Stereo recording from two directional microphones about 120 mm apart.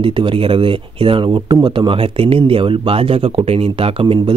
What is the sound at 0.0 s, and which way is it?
Speech, 45° right (ahead or behind).